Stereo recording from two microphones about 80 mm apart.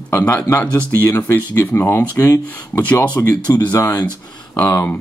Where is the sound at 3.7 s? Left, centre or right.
Left.